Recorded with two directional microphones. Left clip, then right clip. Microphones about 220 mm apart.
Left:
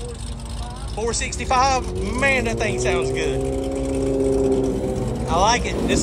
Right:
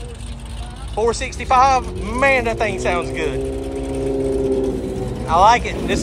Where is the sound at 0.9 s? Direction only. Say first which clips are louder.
Right 6 dB; 10° left (ahead or behind).